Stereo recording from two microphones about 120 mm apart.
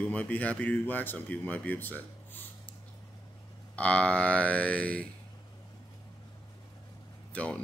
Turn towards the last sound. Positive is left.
turn(degrees=10)  # may be behind; listen again after turning